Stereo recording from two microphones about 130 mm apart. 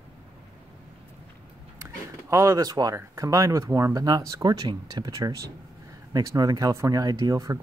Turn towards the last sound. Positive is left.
turn(degrees=-30)  # may be behind; listen again after turning